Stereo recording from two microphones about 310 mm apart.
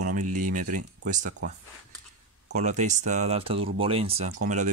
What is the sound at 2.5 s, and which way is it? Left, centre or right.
Speech, right.